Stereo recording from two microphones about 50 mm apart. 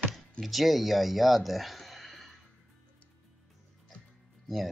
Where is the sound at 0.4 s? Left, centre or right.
Centre.